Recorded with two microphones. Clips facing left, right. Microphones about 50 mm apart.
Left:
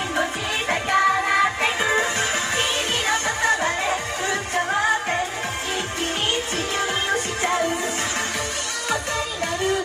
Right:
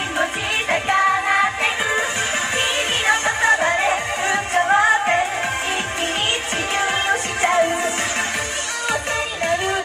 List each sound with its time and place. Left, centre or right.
0.2 s music: right
0.9 s music: centre
3.1 s music: right
6.8 s music: right